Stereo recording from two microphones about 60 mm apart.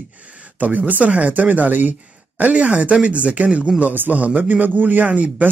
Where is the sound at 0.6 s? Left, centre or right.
Right.